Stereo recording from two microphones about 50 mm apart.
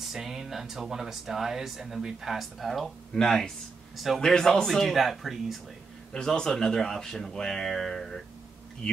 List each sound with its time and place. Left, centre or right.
0.1 s a man's voice: centre
6.1 s speech: centre